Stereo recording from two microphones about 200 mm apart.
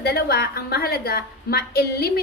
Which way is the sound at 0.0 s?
50° left (ahead or behind).